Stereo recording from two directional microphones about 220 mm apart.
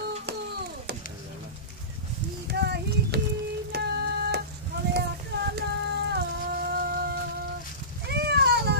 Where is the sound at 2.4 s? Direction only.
50° right (ahead or behind).